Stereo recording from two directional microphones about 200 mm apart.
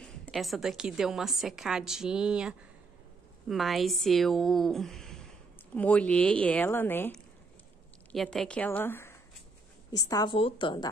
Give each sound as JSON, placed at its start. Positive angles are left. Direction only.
{"t": 0.0, "sound": "a woman's voice", "side_deg": 0}